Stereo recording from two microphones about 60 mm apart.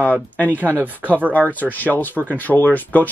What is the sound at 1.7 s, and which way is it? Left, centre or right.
Speech, left.